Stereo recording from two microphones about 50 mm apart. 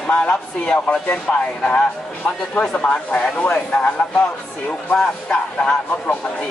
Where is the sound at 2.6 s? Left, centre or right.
Left.